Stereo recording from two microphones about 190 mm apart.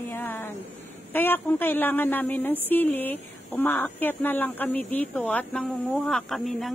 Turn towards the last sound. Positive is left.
turn(degrees=0)  # may be behind; listen again after turning